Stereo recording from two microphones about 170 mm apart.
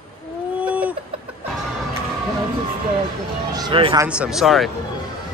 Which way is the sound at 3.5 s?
30° right (ahead or behind).